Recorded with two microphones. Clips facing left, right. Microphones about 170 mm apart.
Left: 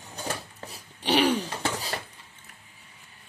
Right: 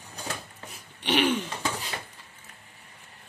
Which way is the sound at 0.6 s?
35° left (ahead or behind).